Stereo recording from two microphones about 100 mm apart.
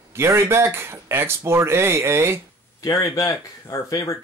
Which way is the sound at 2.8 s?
35° left (ahead or behind).